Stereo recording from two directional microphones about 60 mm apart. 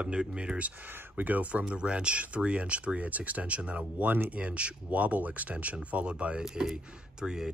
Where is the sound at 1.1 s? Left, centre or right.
Right.